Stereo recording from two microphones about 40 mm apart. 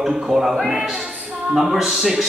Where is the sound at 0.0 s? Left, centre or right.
Centre.